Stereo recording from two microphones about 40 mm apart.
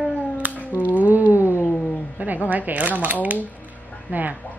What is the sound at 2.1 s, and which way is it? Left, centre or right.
Speech, right.